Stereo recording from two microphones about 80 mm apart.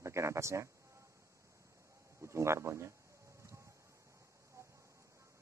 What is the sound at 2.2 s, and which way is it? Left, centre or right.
Speech, right.